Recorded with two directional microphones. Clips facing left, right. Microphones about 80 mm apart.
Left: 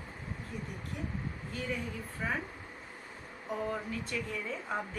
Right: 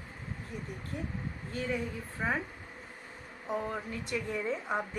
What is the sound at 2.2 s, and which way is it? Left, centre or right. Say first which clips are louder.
Speech: right 3 dB; right.